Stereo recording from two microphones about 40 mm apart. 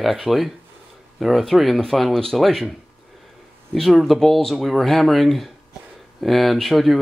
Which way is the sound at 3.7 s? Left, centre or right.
Centre.